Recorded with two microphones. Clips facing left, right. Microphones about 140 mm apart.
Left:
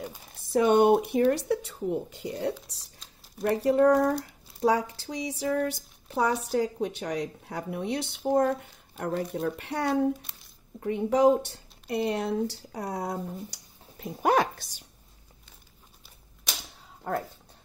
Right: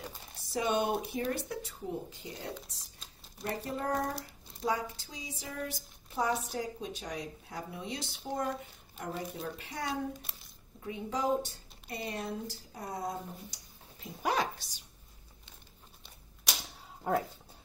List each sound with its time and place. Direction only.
0.4 s speech: 60° left (ahead or behind)
17.1 s speech: 10° right (ahead or behind)